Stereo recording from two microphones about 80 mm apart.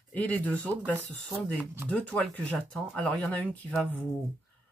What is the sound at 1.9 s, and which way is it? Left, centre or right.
Speech, centre.